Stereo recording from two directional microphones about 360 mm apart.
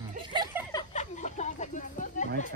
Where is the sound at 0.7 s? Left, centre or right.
Centre.